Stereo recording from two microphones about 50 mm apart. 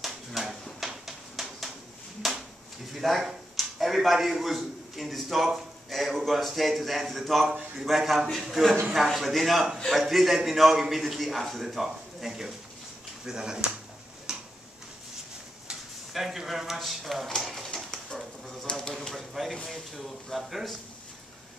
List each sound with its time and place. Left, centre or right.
0.0 s a sound: centre
2.9 s a man's voice: centre
7.4 s a man's voice: centre
7.8 s a man's voice: centre
14.3 s tick-tock: centre
16.1 s a man's voice: centre
17.4 s typewriter: centre
17.6 s pigeon: centre
19.0 s a sound: centre
19.5 s a man's voice: centre